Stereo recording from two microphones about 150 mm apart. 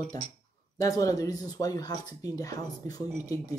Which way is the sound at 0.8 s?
20° left (ahead or behind).